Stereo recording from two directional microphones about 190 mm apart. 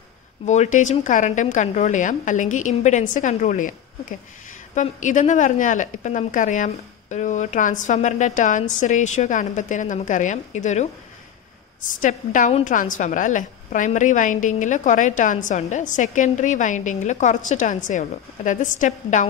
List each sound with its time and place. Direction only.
0.5 s a woman's voice: 40° left (ahead or behind)
4.7 s a woman's voice: 40° left (ahead or behind)